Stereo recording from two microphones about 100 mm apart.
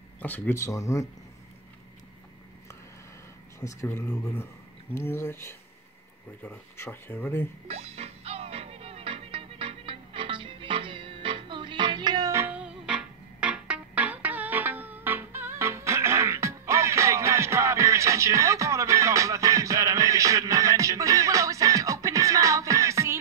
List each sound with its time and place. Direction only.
0.2 s speech: 20° left (ahead or behind)
0.6 s speech: 30° left (ahead or behind)
3.5 s speech: 25° left (ahead or behind)
7.6 s music: 90° right; by 12.3 s 45° right (ahead or behind)
12.3 s music: 25° right (ahead or behind)
12.5 s music: 10° right (ahead or behind); by 23.1 s 30° right (ahead or behind)